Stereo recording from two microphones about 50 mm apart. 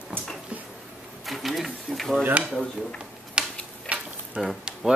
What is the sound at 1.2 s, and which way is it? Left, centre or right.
Sewing machine, centre.